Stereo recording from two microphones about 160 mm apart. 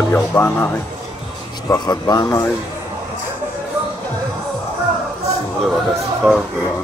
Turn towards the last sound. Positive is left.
turn(degrees=0)  # may be behind; listen again after turning